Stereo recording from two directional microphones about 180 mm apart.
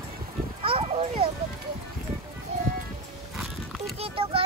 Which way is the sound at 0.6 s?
30° right (ahead or behind).